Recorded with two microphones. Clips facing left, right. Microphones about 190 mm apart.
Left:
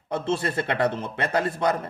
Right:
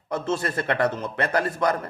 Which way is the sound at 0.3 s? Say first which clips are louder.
Even; 30° left (ahead or behind).